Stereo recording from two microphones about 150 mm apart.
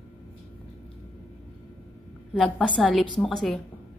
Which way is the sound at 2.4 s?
5° left (ahead or behind).